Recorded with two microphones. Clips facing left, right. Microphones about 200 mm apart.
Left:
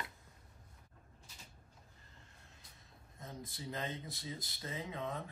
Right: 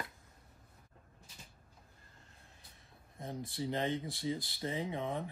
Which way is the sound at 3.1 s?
25° right (ahead or behind).